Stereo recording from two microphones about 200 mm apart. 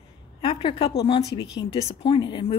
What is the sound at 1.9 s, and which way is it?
Speech, 25° left (ahead or behind).